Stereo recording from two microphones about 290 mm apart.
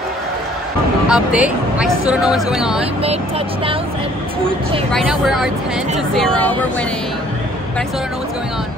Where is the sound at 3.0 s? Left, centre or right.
Centre.